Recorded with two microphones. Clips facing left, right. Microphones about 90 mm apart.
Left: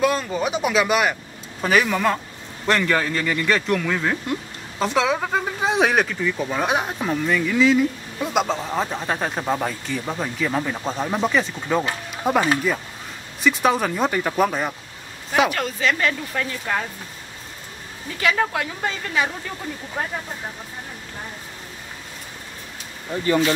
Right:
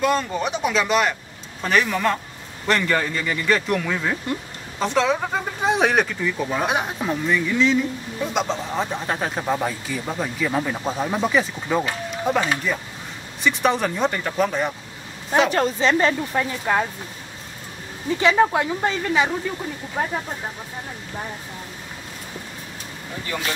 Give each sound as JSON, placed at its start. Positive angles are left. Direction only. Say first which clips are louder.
{"t": 0.0, "sound": "speech", "louder": "even", "side_deg": 5}
{"t": 12.3, "sound": "speech", "louder": "left 3 dB", "side_deg": 15}
{"t": 13.4, "sound": "speech", "louder": "left 1 dB", "side_deg": 0}
{"t": 15.5, "sound": "a woman's voice", "louder": "right 4 dB", "side_deg": -30}
{"t": 18.2, "sound": "a woman's voice", "louder": "right 4 dB", "side_deg": -20}